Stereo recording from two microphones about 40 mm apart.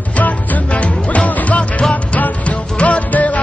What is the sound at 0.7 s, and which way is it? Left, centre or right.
Music, left.